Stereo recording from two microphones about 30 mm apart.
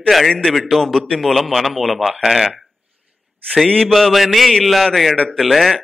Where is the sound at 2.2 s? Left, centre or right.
Centre.